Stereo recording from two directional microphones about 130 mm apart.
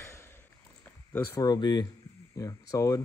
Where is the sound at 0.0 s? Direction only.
20° left (ahead or behind).